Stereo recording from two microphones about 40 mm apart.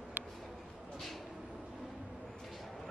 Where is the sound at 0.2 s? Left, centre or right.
Right.